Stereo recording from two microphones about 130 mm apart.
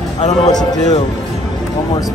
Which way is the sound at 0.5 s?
30° left (ahead or behind).